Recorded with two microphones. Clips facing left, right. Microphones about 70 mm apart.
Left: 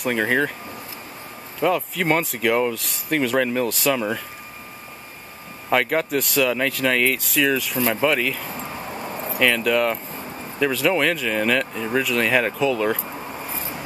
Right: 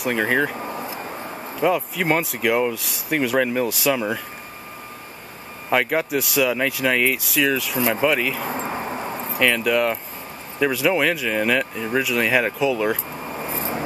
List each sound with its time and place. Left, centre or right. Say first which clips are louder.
0.0 s speech: even; centre
1.6 s speech: even; centre
5.7 s speech: even; centre
8.5 s a sound: right 5 dB; right
9.4 s speech: even; centre
13.4 s vehicle: right 5 dB; right